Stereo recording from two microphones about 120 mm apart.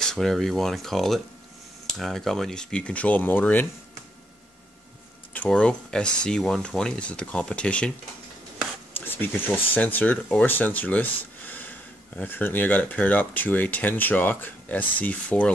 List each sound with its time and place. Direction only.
0.0 s speech: 5° left (ahead or behind)
5.3 s speech: 10° left (ahead or behind)
9.0 s speech: 15° left (ahead or behind)